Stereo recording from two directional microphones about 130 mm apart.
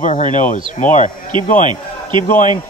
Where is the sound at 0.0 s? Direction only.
70° left (ahead or behind).